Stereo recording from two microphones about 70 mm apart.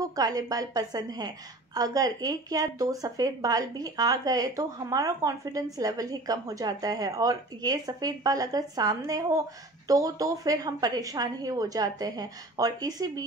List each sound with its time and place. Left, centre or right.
0.0 s a woman's voice: right